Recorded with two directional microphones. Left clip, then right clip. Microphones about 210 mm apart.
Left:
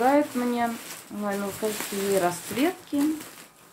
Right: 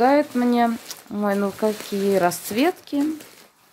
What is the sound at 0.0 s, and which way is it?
Speech, 50° right (ahead or behind).